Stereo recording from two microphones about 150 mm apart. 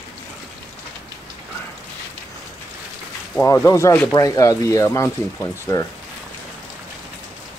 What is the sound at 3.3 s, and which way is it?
Speech, 15° left (ahead or behind).